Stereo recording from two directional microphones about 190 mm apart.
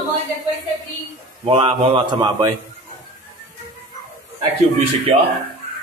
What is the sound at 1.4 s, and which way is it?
A man's voice, 30° right (ahead or behind).